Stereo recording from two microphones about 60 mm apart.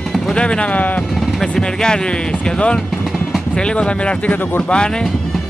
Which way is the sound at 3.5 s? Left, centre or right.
Centre.